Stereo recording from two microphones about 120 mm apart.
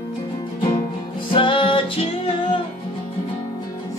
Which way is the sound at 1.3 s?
45° left (ahead or behind).